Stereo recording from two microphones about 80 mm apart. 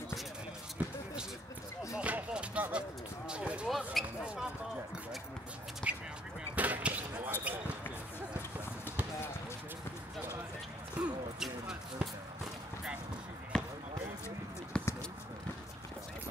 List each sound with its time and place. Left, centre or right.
0.8 s music: right
2.0 s music: centre
3.3 s basketball bounce: centre
4.0 s basketball bounce: centre
5.9 s a sound: centre
11.0 s a sound: centre
11.3 s basketball bounce: centre
13.5 s basketball bounce: centre
14.7 s basketball bounce: centre